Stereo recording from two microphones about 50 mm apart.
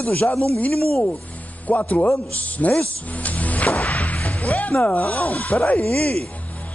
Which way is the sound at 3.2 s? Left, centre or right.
Left.